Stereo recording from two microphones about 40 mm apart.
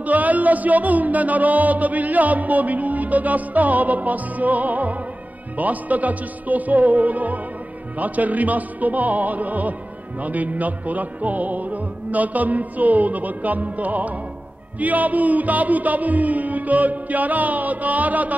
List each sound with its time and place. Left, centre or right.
0.0 s music: right